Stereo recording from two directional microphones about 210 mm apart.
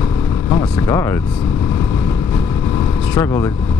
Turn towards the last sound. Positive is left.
turn(degrees=15)  # may be behind; listen again after turning